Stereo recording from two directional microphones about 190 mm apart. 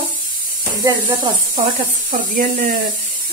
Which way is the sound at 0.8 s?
20° right (ahead or behind).